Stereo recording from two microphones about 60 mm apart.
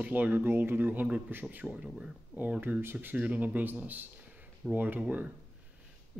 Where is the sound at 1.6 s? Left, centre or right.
Centre.